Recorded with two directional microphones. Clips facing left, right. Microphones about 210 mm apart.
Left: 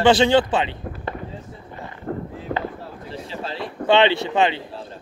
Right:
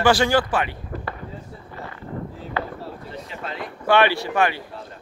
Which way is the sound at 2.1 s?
55° left (ahead or behind).